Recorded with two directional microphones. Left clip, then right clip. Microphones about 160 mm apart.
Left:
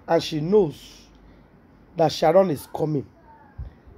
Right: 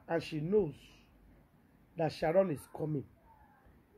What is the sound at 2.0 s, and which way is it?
Speech, 15° left (ahead or behind).